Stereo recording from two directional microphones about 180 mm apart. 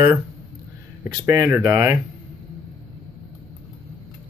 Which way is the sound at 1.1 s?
20° right (ahead or behind).